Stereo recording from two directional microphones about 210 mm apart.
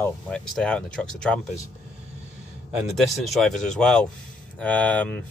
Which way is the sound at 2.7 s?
Centre (ahead or behind).